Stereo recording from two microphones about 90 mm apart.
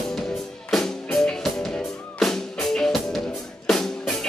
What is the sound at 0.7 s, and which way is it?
Music, 5° left (ahead or behind).